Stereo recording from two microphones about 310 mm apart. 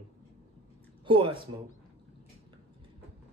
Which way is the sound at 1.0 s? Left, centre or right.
Centre.